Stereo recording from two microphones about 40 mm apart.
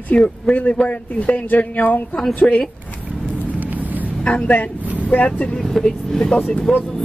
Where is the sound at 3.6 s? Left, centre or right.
Right.